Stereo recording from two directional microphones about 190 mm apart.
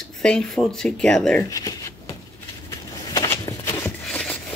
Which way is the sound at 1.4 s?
20° left (ahead or behind).